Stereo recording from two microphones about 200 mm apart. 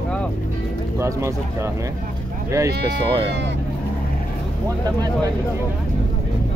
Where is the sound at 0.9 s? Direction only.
15° right (ahead or behind).